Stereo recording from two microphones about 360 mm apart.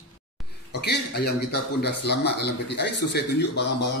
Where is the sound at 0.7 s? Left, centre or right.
Left.